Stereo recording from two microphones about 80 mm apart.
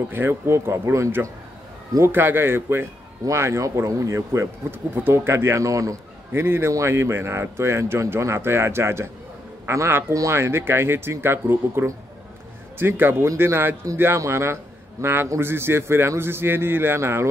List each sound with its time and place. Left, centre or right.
0.1 s a man's voice: right
4.9 s speech: right
6.3 s a man's voice: right